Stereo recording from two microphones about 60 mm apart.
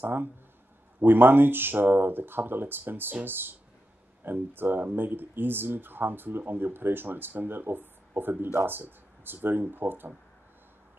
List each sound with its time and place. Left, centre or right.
0.0 s speech: right